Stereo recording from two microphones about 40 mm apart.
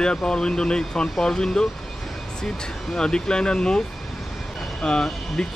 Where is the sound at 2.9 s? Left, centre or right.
Centre.